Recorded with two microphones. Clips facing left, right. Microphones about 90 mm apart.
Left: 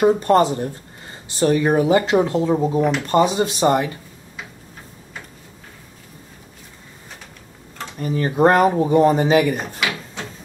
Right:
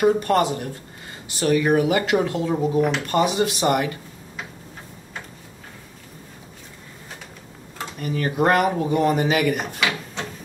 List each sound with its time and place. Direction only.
0.0 s speech: 30° left (ahead or behind)
8.0 s speech: 30° left (ahead or behind)
9.8 s drawer open or close: centre (ahead or behind)